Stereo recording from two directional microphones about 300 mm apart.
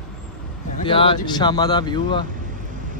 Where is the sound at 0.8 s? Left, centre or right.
Centre.